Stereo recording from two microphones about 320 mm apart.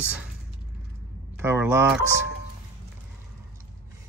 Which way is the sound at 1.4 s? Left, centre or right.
Centre.